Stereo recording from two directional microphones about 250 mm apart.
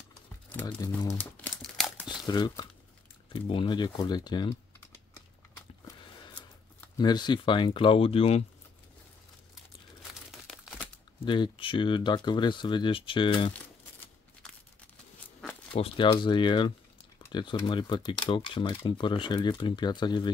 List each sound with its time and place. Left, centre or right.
0.7 s crumpling: centre
2.2 s speech: centre
7.0 s speech: centre
10.4 s crumpling: centre
11.2 s speech: centre
13.5 s tearing: centre
15.7 s speech: left